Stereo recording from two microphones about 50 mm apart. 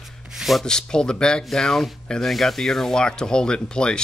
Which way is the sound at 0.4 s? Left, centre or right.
Centre.